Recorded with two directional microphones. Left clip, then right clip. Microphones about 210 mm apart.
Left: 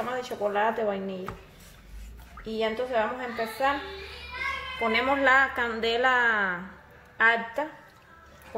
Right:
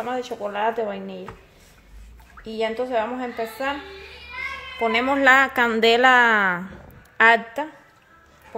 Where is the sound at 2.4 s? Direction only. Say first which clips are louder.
Right 3 dB; 50° right (ahead or behind).